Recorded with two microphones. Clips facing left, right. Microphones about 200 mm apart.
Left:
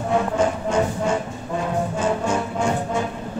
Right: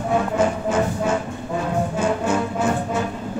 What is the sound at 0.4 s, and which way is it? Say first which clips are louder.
Music: even; 5° right (ahead or behind).